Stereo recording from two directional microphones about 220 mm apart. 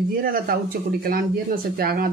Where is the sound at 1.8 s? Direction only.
45° right (ahead or behind).